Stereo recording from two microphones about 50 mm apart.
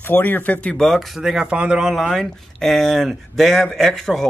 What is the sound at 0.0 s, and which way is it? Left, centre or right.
Speech, left.